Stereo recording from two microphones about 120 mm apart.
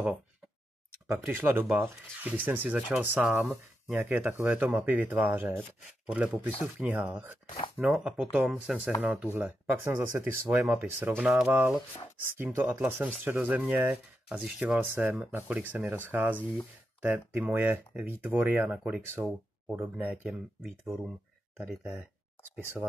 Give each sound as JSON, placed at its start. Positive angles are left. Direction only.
{"t": 1.0, "sound": "speech", "side_deg": -20}
{"t": 21.5, "sound": "speech", "side_deg": -10}